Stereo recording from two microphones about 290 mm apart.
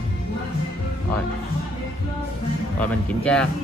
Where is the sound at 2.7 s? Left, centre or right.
Centre.